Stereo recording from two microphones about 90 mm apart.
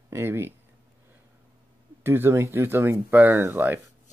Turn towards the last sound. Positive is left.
turn(degrees=-25)  # may be behind; listen again after turning